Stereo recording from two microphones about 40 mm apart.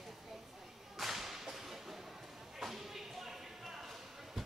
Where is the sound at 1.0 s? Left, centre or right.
Centre.